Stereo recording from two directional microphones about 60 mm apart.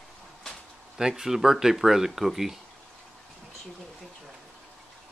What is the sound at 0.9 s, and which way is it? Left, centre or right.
Speech, centre.